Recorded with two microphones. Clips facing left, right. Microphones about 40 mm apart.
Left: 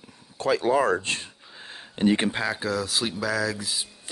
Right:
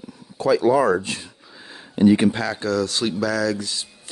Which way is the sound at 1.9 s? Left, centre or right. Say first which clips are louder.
Right 7 dB; left.